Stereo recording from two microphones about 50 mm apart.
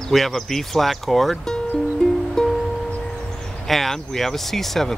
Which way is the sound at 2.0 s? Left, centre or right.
Centre.